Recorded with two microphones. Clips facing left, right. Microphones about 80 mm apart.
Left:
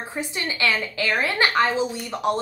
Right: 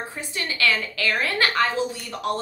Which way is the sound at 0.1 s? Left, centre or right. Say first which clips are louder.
Left 3 dB; left.